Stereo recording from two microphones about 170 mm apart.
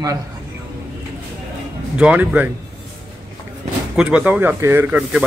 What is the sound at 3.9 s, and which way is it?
A man's voice, 5° right (ahead or behind).